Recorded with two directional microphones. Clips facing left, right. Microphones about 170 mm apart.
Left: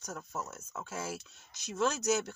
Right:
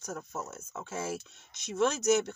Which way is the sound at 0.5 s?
20° right (ahead or behind).